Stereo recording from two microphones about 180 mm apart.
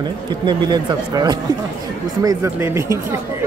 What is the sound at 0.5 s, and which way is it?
Speech, 25° right (ahead or behind).